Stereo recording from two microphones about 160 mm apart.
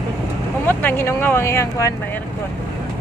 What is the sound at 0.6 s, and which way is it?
Speech, 15° left (ahead or behind).